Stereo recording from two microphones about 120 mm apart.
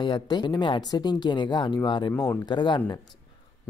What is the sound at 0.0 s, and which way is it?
Speech, 40° left (ahead or behind).